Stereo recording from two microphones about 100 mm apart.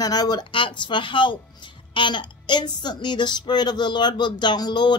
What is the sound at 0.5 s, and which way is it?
Speech, 55° left (ahead or behind).